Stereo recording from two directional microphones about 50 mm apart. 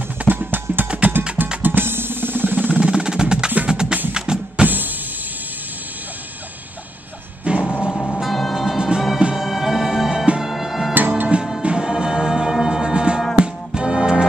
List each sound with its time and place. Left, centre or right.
0.2 s music: right
0.8 s music: right
1.6 s drum: right
2.7 s percussion: centre
3.6 s music: centre
4.6 s drum kit: right
7.4 s music: right
8.2 s music: centre
8.6 s music: centre
9.3 s bagpipes: centre
10.4 s music: centre
11.0 s music: right
11.6 s music: centre